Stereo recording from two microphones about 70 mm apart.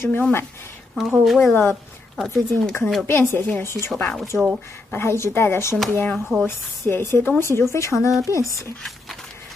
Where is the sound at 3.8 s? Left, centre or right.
Centre.